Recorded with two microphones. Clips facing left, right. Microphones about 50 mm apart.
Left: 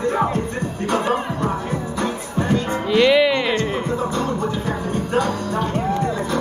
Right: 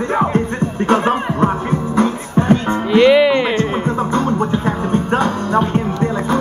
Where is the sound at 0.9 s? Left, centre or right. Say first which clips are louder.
Right 5 dB; right.